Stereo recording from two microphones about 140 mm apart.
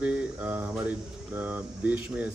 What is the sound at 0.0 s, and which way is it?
Speech, 10° right (ahead or behind).